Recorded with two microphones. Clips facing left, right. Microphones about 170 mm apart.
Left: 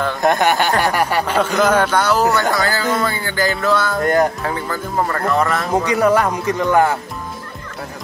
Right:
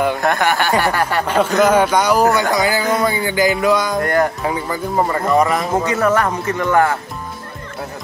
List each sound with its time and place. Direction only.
0.2 s speech: 20° left (ahead or behind)
1.2 s music: 10° right (ahead or behind)
4.0 s speech: 20° left (ahead or behind)
4.4 s music: 10° right (ahead or behind)
5.9 s speech: 15° left (ahead or behind)